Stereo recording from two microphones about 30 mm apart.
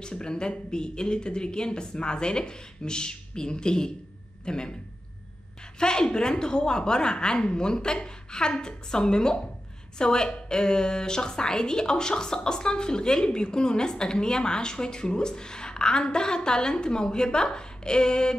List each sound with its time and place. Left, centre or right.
0.0 s a woman's voice: left
5.8 s a woman's voice: left